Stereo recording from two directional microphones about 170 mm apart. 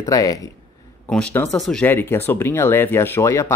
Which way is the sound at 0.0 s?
20° left (ahead or behind).